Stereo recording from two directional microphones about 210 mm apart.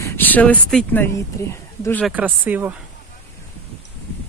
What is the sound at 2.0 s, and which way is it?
Speech, 5° right (ahead or behind).